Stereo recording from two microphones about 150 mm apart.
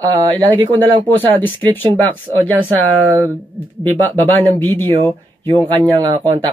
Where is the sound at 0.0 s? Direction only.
30° right (ahead or behind).